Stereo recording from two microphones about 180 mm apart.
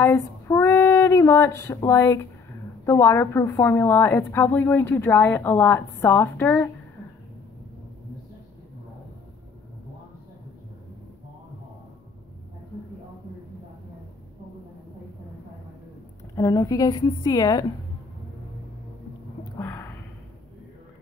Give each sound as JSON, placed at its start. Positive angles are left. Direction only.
{"t": 0.0, "sound": "female singing", "side_deg": 15}
{"t": 2.8, "sound": "a woman's voice", "side_deg": 15}
{"t": 16.3, "sound": "a woman's voice", "side_deg": 20}
{"t": 19.6, "sound": "a sound", "side_deg": 10}